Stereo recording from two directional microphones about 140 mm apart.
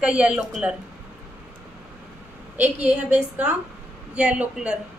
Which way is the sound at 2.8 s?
10° right (ahead or behind).